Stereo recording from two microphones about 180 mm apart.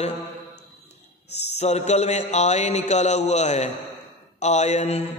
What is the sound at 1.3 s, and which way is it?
Mantra, 40° left (ahead or behind).